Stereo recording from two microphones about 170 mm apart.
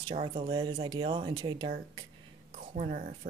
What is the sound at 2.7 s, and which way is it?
Speech, 45° right (ahead or behind).